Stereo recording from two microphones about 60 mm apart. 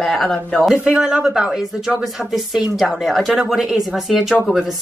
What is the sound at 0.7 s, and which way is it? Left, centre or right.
Speech, right.